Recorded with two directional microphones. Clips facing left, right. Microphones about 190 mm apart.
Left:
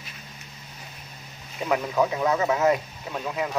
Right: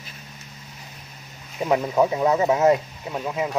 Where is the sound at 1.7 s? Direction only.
25° right (ahead or behind).